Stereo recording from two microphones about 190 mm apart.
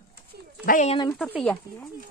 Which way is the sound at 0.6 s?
45° left (ahead or behind).